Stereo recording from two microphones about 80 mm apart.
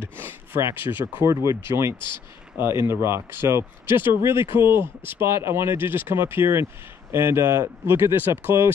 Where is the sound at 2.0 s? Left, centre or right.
Left.